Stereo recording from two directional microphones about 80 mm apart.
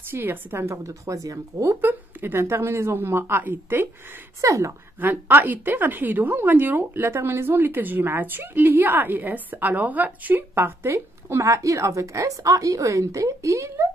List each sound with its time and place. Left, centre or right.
0.1 s speech: right
1.8 s a woman's voice: right
4.4 s speech: right
5.0 s a woman's voice: right